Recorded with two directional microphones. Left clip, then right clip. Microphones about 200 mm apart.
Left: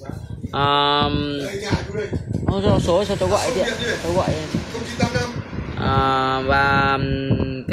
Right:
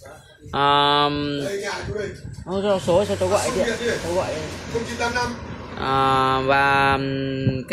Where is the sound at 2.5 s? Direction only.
15° left (ahead or behind).